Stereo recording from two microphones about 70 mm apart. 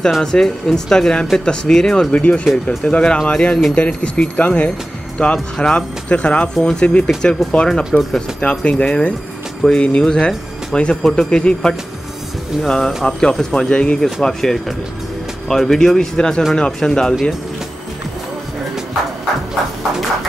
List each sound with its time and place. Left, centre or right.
0.2 s speech: centre
2.1 s speech: centre